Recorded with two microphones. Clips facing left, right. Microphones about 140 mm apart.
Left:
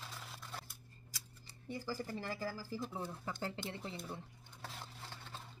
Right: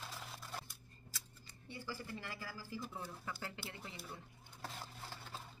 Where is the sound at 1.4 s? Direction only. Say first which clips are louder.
Left 5 dB; 35° left (ahead or behind).